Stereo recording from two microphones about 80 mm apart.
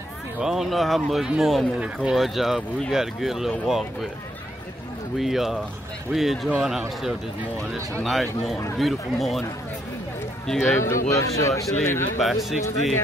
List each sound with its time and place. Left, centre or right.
0.4 s speech: centre
5.1 s speech: centre
8.0 s speech: centre
10.6 s speech: left
12.2 s speech: centre